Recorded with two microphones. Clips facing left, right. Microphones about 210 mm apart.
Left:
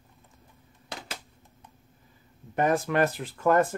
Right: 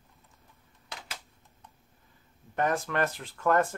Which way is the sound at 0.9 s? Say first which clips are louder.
Left 5 dB; 30° left (ahead or behind).